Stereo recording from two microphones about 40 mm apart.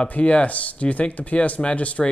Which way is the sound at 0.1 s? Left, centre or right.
Left.